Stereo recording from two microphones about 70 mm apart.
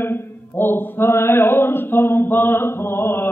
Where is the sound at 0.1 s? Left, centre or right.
Left.